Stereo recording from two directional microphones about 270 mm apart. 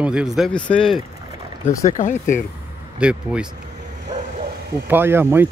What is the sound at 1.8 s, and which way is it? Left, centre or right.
Speech, left.